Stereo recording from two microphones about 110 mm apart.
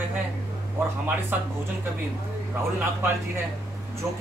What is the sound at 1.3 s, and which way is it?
Speech, 15° right (ahead or behind).